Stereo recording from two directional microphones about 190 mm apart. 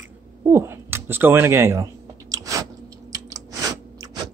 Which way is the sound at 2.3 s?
20° right (ahead or behind).